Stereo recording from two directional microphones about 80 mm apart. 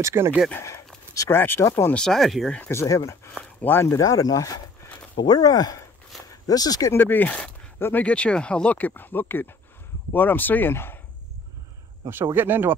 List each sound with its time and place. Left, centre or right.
0.0 s speech: right
1.3 s speech: left
2.0 s speech: centre
2.7 s speech: left
5.1 s speech: left
6.9 s speech: left
12.4 s speech: right